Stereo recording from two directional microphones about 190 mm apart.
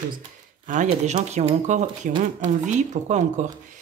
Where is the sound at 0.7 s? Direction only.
40° right (ahead or behind).